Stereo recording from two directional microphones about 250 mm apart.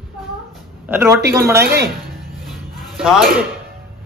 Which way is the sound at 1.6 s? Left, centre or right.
Right.